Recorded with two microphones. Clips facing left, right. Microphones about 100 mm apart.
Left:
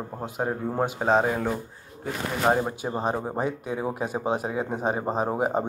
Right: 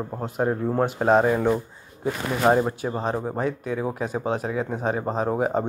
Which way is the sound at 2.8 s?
15° left (ahead or behind).